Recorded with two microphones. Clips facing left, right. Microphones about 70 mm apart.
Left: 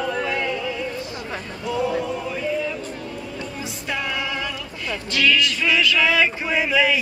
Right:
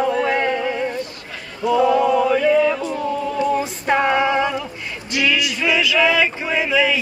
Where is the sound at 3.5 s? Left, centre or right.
Right.